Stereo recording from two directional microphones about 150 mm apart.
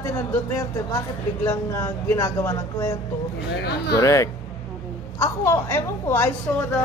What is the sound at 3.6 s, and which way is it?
Speech, 90° left.